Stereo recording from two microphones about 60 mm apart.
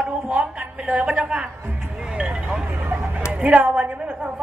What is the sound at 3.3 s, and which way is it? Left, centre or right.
A woman's voice, right.